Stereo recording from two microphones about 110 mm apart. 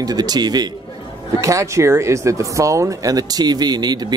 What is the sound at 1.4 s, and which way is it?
Speech, 30° right (ahead or behind).